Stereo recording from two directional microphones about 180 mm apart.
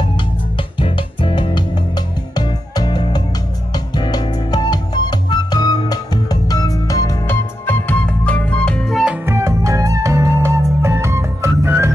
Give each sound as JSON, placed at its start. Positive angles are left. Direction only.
{"t": 0.7, "sound": "music", "side_deg": 30}